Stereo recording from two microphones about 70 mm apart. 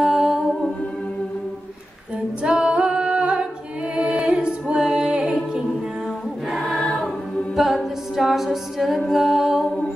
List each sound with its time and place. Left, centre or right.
0.0 s music: centre
2.4 s a capella: centre
3.9 s music: centre
6.5 s choir: centre
7.5 s a capella: centre